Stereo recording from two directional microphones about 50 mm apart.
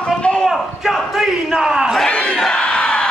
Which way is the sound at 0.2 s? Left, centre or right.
Left.